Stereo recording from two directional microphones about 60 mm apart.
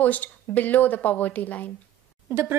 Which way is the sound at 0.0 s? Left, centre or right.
Left.